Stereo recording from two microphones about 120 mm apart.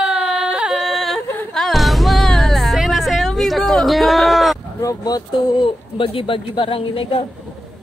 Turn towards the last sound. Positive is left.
turn(degrees=50)  # may be behind; listen again after turning